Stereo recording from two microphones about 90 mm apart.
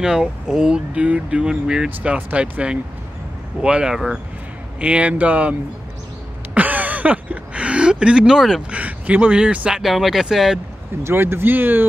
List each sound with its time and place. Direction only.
0.0 s speech: 5° right (ahead or behind)
6.5 s a sound: 15° right (ahead or behind)
8.6 s speech: 15° right (ahead or behind)
11.1 s speech: 25° right (ahead or behind)